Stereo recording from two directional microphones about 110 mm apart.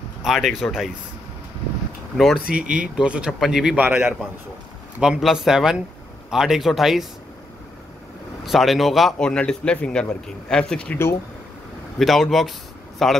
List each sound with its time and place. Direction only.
0.2 s speech: centre (ahead or behind)
2.1 s speech: centre (ahead or behind)
3.8 s speech: 15° right (ahead or behind)
5.0 s speech: 5° right (ahead or behind)
8.5 s speech: centre (ahead or behind)
12.0 s speech: centre (ahead or behind)